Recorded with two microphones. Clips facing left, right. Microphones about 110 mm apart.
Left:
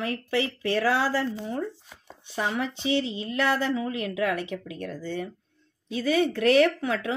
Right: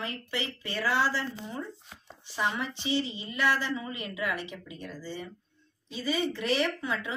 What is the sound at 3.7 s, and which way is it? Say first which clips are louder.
Speech: left 7 dB; 90° left.